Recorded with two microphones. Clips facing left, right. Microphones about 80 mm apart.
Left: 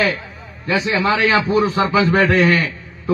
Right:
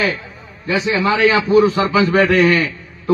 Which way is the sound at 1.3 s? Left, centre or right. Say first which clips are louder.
Right 3 dB; left.